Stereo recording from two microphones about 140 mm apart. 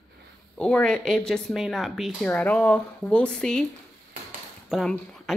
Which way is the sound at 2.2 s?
10° left (ahead or behind).